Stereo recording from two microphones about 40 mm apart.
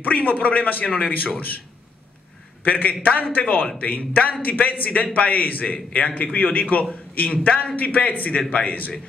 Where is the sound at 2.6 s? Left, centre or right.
Left.